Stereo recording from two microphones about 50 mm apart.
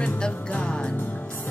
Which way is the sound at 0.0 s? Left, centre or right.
Centre.